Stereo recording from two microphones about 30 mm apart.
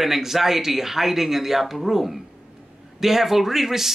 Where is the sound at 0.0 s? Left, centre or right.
Centre.